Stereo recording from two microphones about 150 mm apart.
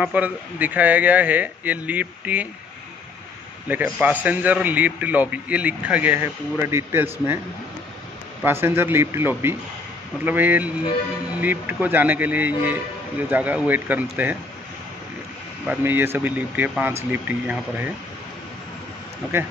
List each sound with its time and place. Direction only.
0.0 s a man's voice: 10° right (ahead or behind)
3.6 s a man's voice: 10° right (ahead or behind)
8.5 s a man's voice: 15° right (ahead or behind)
15.6 s a man's voice: 10° right (ahead or behind)